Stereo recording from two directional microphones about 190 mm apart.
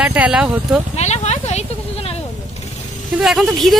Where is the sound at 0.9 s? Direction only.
35° left (ahead or behind).